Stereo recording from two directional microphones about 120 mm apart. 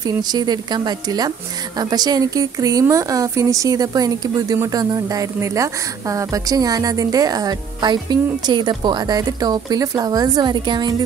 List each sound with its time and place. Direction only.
0.0 s speech: 35° right (ahead or behind)